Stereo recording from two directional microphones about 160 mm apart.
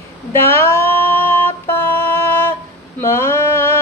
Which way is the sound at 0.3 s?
15° left (ahead or behind).